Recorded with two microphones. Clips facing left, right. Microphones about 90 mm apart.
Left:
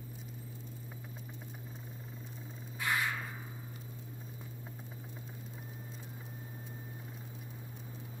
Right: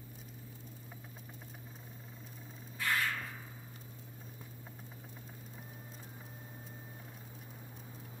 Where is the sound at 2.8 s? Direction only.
15° left (ahead or behind).